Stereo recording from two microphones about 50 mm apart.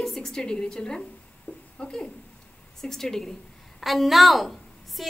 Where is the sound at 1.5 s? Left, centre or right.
Left.